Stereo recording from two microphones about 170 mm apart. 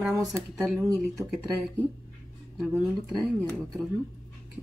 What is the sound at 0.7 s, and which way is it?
Speech, 20° right (ahead or behind).